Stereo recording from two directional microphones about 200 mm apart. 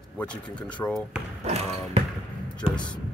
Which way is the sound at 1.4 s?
30° right (ahead or behind).